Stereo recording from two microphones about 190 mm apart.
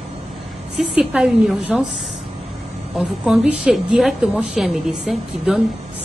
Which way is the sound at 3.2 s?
5° right (ahead or behind).